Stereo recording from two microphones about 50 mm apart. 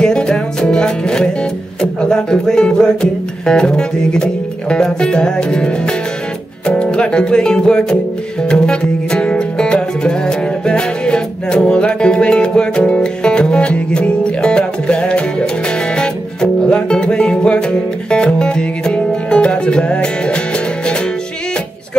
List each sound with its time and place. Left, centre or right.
0.0 s music: centre